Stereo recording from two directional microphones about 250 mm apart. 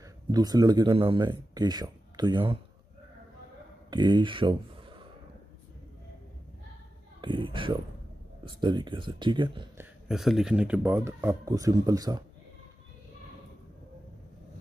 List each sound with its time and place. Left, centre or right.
0.3 s a man's voice: centre
3.9 s speech: centre
7.2 s speech: centre
10.0 s a man's voice: centre